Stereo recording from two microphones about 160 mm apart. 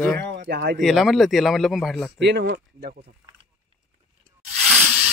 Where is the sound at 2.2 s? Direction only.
85° right.